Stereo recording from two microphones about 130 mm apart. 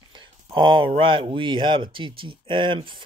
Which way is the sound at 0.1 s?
40° right (ahead or behind).